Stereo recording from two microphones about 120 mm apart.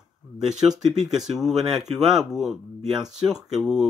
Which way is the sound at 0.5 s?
5° right (ahead or behind).